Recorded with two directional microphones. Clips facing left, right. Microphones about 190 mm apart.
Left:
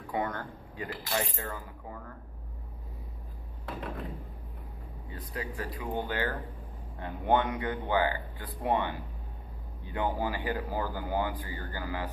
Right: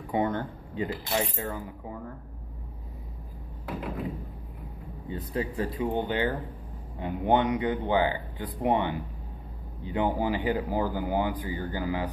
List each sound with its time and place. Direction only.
0.1 s speech: 20° right (ahead or behind)
3.6 s door: 5° right (ahead or behind)
5.1 s speech: 25° right (ahead or behind)